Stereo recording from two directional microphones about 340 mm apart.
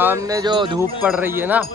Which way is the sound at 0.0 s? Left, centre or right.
Centre.